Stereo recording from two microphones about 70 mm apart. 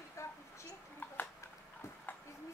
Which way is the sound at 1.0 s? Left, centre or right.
Left.